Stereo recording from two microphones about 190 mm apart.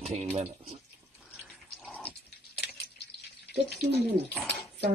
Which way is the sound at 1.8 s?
5° left (ahead or behind).